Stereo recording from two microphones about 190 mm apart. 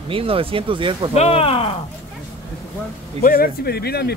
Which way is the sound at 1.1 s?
35° left (ahead or behind).